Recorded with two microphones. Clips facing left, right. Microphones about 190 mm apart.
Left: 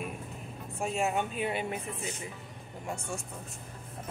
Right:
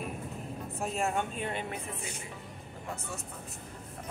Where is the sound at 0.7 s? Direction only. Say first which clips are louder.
Left 2 dB; centre (ahead or behind).